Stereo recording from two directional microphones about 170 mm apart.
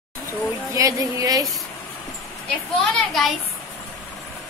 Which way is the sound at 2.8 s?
Centre (ahead or behind).